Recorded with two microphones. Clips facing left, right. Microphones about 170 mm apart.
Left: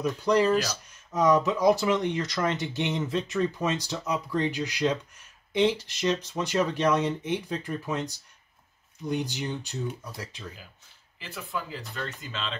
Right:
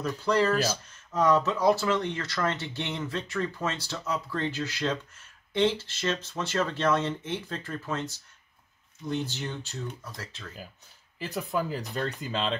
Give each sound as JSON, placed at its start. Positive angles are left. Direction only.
{"t": 0.0, "sound": "speech", "side_deg": 15}
{"t": 11.1, "sound": "speech", "side_deg": -40}